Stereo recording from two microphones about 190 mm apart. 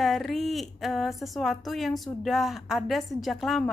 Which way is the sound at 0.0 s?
Centre (ahead or behind).